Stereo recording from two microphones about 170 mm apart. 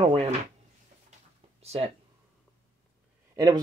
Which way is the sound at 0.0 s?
40° right (ahead or behind).